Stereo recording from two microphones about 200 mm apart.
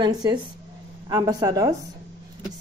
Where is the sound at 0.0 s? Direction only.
20° right (ahead or behind).